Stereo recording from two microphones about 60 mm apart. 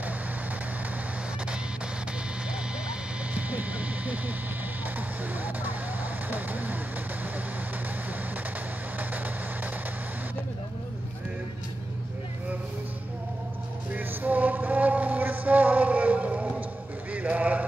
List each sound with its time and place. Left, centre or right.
3.3 s vehicle: right
8.9 s vehicle: right
13.9 s a sound: right